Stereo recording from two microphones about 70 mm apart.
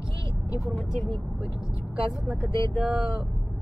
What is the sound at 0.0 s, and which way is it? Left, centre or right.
Vehicle, left.